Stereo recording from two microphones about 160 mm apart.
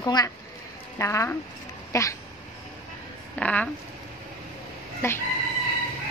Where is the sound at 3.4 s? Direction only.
10° left (ahead or behind).